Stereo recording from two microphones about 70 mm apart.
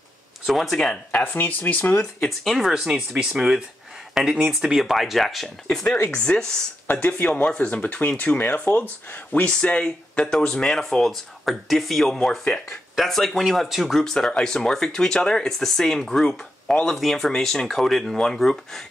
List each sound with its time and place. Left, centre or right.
0.5 s speech: centre
1.2 s speech: left
2.2 s speech: centre
5.9 s speech: left; by 18.8 s centre